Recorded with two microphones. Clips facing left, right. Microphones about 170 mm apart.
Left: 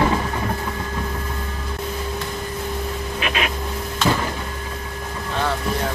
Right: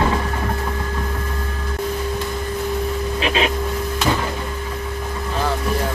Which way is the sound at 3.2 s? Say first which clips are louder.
Right 4 dB; 30° right (ahead or behind).